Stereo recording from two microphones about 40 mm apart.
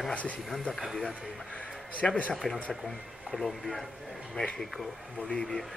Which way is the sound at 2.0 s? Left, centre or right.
Centre.